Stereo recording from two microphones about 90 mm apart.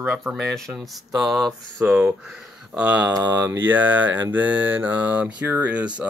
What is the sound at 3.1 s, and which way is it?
Speech, 40° right (ahead or behind).